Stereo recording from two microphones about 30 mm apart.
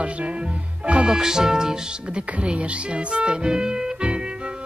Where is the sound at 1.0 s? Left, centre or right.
Right.